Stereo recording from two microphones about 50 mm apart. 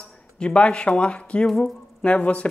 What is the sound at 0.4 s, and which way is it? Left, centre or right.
Speech, left.